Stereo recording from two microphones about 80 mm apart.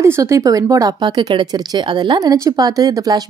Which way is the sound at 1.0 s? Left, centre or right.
Right.